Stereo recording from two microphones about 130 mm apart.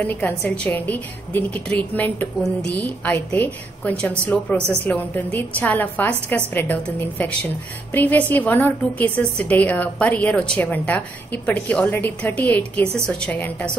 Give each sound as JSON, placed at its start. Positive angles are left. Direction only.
{"t": 0.0, "sound": "a woman's voice", "side_deg": 15}